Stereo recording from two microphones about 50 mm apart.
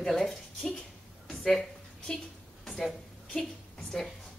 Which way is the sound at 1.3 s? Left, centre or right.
Centre.